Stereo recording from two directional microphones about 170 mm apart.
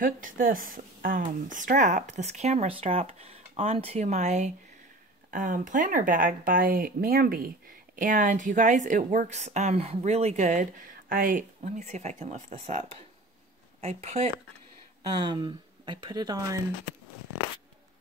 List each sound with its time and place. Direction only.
0.0 s speech: 55° right (ahead or behind)
15.1 s speech: 25° right (ahead or behind)